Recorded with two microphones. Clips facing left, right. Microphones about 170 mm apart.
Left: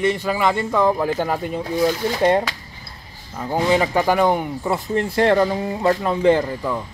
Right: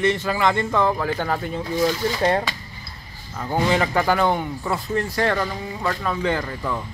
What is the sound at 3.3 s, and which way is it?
Speech, 5° left (ahead or behind).